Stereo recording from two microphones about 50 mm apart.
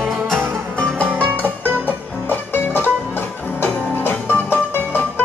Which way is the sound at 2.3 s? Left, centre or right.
Left.